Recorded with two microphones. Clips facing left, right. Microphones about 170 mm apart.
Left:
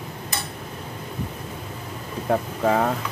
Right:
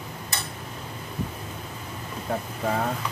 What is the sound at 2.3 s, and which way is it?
Speech, 85° left.